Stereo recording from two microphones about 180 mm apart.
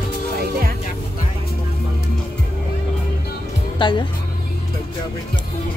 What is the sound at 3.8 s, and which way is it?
Speech, 25° left (ahead or behind).